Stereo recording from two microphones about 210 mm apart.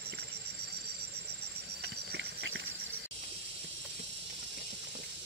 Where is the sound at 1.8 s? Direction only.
55° right (ahead or behind).